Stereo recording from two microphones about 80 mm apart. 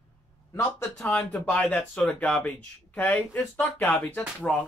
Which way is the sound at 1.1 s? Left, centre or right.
Centre.